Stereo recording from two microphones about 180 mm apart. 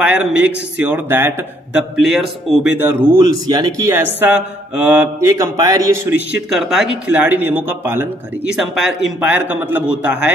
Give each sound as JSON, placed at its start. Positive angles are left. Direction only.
{"t": 0.0, "sound": "speech", "side_deg": -5}
{"t": 1.8, "sound": "a man's voice", "side_deg": 0}
{"t": 2.8, "sound": "speech", "side_deg": -10}
{"t": 6.5, "sound": "speech", "side_deg": 0}
{"t": 8.5, "sound": "speech", "side_deg": 0}